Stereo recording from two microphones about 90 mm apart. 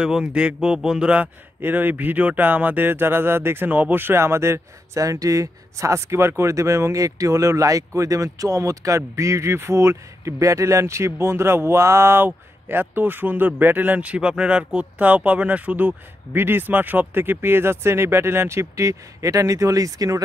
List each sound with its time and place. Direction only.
0.0 s speech: 10° right (ahead or behind); by 20.2 s 40° right (ahead or behind)